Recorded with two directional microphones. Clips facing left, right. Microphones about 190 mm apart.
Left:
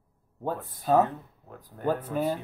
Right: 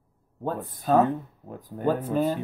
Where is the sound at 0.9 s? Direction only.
15° left (ahead or behind).